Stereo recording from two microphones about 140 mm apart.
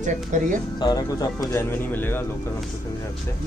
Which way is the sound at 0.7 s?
30° left (ahead or behind).